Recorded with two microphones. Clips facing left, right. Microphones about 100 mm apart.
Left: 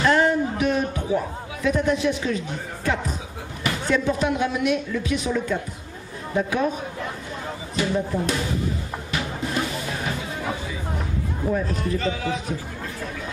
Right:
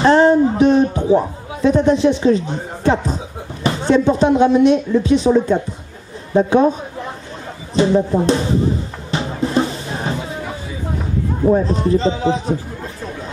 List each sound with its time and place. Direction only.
0.0 s a man's voice: 30° right (ahead or behind)
7.7 s music: 30° right (ahead or behind)
11.4 s speech: 30° right (ahead or behind)